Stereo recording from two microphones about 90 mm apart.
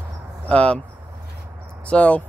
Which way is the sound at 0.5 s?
15° left (ahead or behind).